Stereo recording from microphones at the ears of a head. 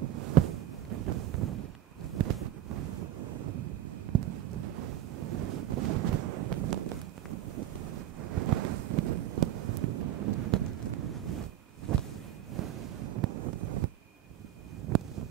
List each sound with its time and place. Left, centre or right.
0.0 s a sound: right
2.1 s vehicle: right
12.5 s wind: right